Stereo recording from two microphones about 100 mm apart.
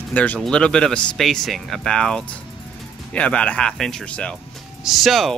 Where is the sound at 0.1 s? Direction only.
15° left (ahead or behind).